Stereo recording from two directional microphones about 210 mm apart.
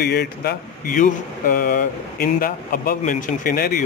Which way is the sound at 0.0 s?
50° left (ahead or behind).